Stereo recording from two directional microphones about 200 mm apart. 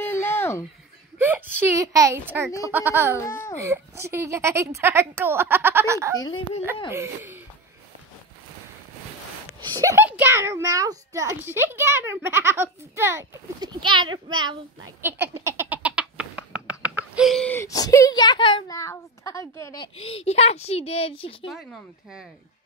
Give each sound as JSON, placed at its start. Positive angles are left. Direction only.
{"t": 0.0, "sound": "a sound", "side_deg": 10}
{"t": 1.1, "sound": "a child's voice", "side_deg": -10}
{"t": 6.1, "sound": "speech", "side_deg": 20}
{"t": 6.9, "sound": "a child's voice", "side_deg": -15}
{"t": 9.8, "sound": "a child's voice", "side_deg": -15}
{"t": 14.1, "sound": "child singing", "side_deg": -20}
{"t": 15.0, "sound": "a child's voice", "side_deg": -10}
{"t": 15.4, "sound": "laughter", "side_deg": -10}